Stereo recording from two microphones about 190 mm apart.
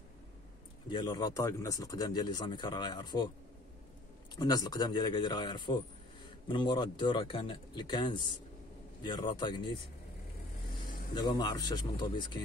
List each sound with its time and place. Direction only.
0.8 s speech: 25° left (ahead or behind)
4.4 s speech: 20° left (ahead or behind)
11.1 s speech: 20° left (ahead or behind)